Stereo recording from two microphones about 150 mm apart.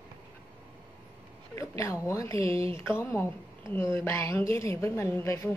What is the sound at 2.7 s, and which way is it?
A woman's voice, 15° left (ahead or behind).